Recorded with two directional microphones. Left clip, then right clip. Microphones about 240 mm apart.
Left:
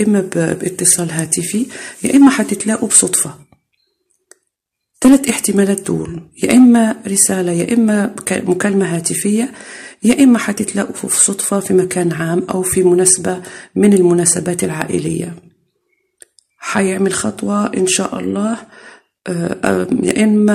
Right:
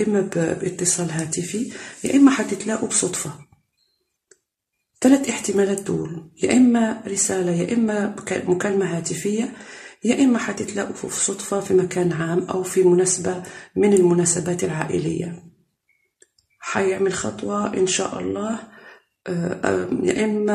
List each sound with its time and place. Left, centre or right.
0.0 s speech: left
4.9 s speech: left
16.5 s speech: left